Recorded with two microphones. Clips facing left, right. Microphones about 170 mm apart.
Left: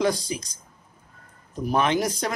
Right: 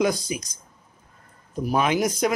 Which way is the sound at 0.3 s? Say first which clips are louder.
Right 1 dB; 15° right (ahead or behind).